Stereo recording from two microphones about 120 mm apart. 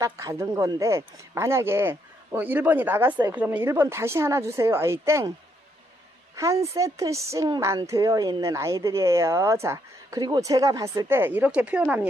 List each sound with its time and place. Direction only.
0.0 s speech: 25° right (ahead or behind)
6.3 s speech: 25° right (ahead or behind)